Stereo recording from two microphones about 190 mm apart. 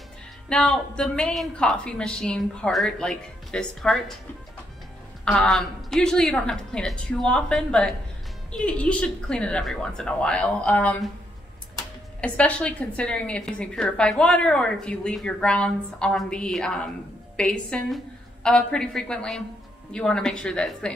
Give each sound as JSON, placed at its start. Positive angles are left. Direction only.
{"t": 0.5, "sound": "a woman's voice", "side_deg": 5}
{"t": 5.2, "sound": "a woman's voice", "side_deg": 5}
{"t": 12.2, "sound": "a woman's voice", "side_deg": 5}